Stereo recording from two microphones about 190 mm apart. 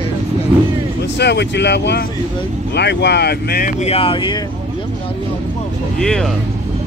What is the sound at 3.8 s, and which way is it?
Speech, 30° left (ahead or behind).